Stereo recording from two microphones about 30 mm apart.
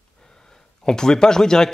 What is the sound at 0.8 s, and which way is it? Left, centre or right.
Speech, left.